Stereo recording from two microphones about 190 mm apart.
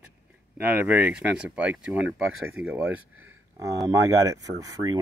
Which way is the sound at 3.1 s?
90° right.